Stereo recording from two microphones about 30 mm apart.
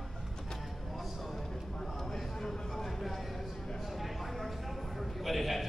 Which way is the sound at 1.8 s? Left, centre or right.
Centre.